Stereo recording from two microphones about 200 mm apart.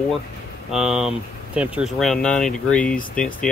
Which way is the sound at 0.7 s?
5° right (ahead or behind).